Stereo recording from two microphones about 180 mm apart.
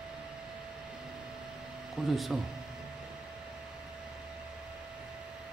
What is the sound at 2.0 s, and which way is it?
Speech, centre (ahead or behind).